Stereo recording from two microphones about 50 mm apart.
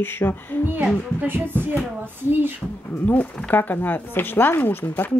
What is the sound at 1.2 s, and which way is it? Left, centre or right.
Music, right.